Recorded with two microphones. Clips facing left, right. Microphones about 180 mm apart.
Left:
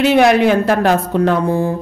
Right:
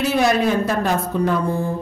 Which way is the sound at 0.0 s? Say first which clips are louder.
Left 6 dB; 75° left (ahead or behind).